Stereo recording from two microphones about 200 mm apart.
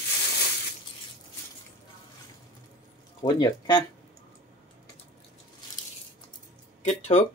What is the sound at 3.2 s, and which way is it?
Speech, 20° left (ahead or behind).